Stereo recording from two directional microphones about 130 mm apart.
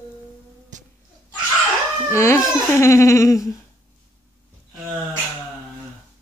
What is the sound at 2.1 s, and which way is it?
Speech, 20° left (ahead or behind).